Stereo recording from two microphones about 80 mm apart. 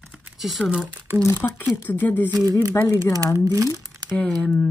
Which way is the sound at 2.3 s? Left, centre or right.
Right.